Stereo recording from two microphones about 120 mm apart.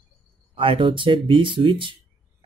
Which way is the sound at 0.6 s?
45° right (ahead or behind).